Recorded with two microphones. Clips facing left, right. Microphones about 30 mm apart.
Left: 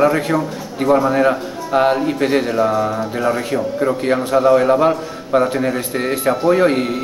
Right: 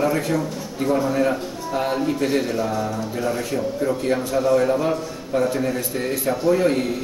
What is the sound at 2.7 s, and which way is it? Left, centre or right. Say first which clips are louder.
A man's voice: left 7 dB; left.